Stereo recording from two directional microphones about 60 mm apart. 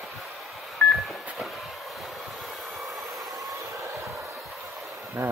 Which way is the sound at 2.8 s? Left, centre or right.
Centre.